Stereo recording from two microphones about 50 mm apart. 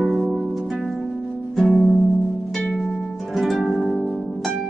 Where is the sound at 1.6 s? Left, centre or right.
Centre.